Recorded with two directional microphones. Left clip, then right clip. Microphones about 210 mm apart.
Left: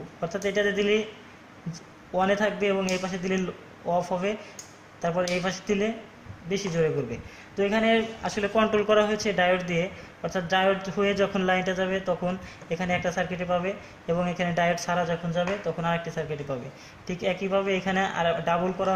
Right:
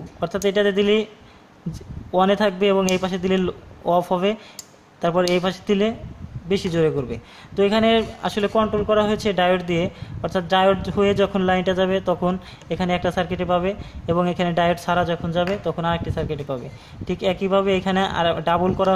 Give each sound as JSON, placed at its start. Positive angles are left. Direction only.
{"t": 0.2, "sound": "speech", "side_deg": -35}
{"t": 2.1, "sound": "speech", "side_deg": -40}